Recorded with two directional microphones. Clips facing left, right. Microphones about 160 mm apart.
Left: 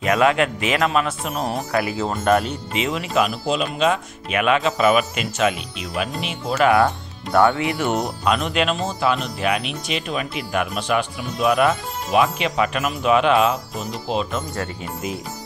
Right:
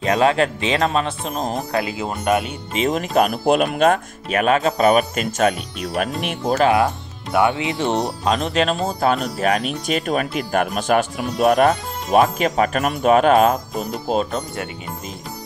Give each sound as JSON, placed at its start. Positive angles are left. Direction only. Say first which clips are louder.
{"t": 0.0, "sound": "speech", "louder": "right 1 dB", "side_deg": -30}
{"t": 2.7, "sound": "speech", "louder": "right 4 dB", "side_deg": -45}
{"t": 6.6, "sound": "speech", "louder": "left 2 dB", "side_deg": -20}
{"t": 8.8, "sound": "speech", "louder": "right 2 dB", "side_deg": -45}